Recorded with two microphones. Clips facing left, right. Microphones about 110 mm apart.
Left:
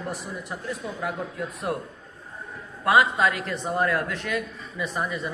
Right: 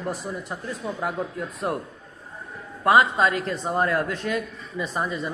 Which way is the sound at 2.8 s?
30° right (ahead or behind).